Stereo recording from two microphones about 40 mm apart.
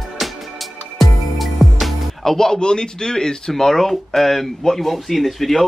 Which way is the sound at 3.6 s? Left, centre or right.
Centre.